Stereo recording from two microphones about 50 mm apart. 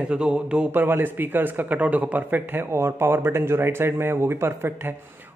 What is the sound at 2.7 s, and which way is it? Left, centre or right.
Speech, right.